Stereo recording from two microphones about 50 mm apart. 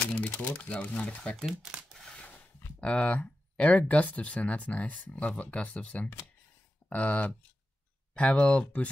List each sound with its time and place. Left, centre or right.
0.1 s crumpling: left
0.6 s speech: left
1.5 s speech: centre
2.0 s a sound: centre
2.8 s speech: left